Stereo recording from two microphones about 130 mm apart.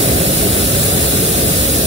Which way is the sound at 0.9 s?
60° right (ahead or behind).